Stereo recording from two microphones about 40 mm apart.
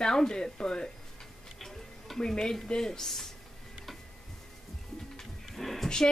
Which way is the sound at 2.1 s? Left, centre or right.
Centre.